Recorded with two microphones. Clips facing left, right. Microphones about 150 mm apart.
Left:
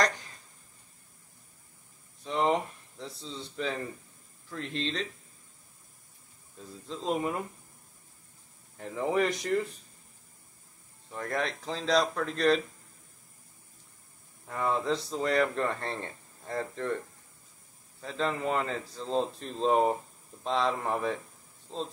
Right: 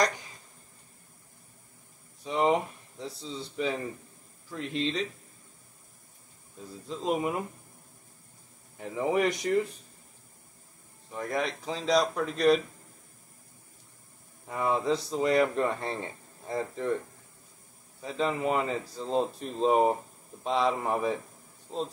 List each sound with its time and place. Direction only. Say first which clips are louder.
2.2 s speech: right 2 dB; 10° right (ahead or behind)
6.9 s speech: right 2 dB; 5° right (ahead or behind)
8.7 s speech: right 1 dB; 5° right (ahead or behind)
11.1 s speech: right 1 dB; 5° right (ahead or behind)
14.5 s speech: right 2 dB; 10° right (ahead or behind)
18.0 s speech: right 2 dB; 10° right (ahead or behind)